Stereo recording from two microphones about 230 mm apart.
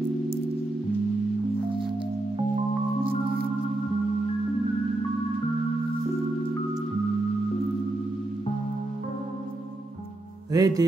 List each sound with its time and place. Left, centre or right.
10.5 s music: centre